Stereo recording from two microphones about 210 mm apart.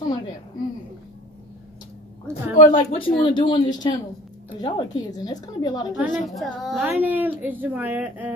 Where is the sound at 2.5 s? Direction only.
35° left (ahead or behind); by 5.9 s 20° left (ahead or behind).